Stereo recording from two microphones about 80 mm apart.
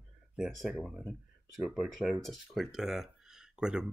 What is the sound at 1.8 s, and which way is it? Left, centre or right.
Speech, centre.